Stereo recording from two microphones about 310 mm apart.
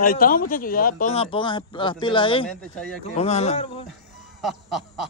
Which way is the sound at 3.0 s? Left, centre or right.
Centre.